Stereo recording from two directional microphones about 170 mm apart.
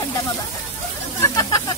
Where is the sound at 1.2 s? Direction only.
20° left (ahead or behind).